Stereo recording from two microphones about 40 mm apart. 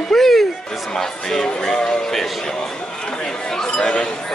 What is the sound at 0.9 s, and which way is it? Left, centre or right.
Speech, centre.